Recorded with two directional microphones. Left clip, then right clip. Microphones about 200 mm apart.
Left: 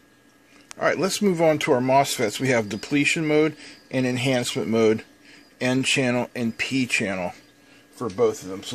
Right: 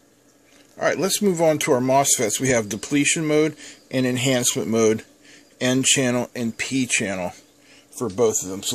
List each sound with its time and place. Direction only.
0.7 s speech: 5° right (ahead or behind)